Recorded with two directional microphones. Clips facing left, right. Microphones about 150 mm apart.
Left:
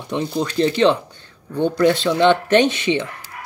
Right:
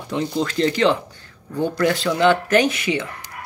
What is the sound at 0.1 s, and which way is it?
Speech, 20° left (ahead or behind).